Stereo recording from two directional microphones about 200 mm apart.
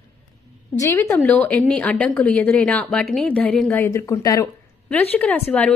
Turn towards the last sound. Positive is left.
turn(degrees=10)  # may be behind; listen again after turning